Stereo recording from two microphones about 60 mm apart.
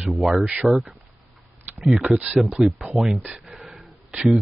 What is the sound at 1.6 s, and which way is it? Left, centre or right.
Speech, right.